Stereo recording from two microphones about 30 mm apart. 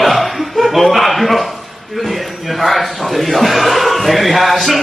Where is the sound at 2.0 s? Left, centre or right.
Centre.